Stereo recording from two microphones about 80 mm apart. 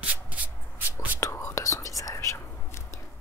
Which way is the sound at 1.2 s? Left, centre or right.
Left.